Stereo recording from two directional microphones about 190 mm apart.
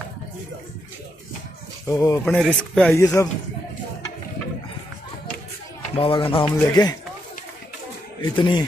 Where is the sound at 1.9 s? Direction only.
20° left (ahead or behind).